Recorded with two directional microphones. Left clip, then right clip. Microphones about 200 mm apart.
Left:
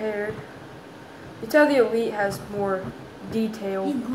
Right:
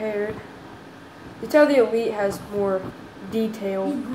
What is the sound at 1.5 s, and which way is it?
A woman's voice, 10° right (ahead or behind).